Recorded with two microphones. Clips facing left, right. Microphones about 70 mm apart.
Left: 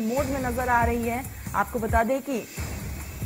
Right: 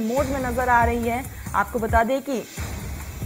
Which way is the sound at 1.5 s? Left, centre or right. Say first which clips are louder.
Right 3 dB; right.